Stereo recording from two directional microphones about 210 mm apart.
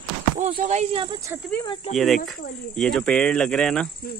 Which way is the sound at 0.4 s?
40° right (ahead or behind).